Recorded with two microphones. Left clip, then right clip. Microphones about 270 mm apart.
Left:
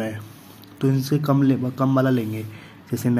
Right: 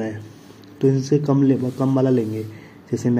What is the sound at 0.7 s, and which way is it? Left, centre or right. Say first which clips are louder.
Speech: right 5 dB; centre.